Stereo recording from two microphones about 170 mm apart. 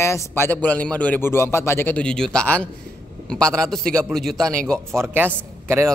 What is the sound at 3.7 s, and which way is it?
Speech, centre (ahead or behind).